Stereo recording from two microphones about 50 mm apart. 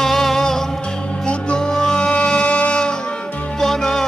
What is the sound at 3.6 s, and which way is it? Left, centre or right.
Music, centre.